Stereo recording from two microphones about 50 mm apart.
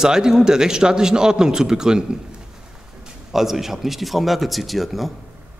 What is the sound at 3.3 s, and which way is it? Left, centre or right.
A man's voice, centre.